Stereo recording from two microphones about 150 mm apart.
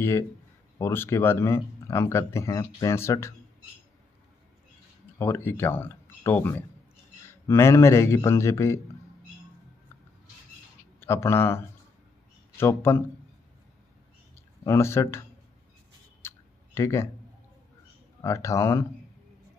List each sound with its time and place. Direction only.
0.7 s speech: 15° left (ahead or behind)
5.2 s a man's voice: 15° left (ahead or behind)
11.0 s speech: 15° left (ahead or behind)
14.3 s speech: 15° left (ahead or behind)
16.2 s clicking: 15° left (ahead or behind)
18.2 s a man's voice: 20° left (ahead or behind)